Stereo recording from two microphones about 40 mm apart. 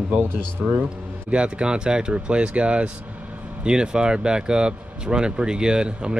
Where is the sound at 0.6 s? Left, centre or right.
Right.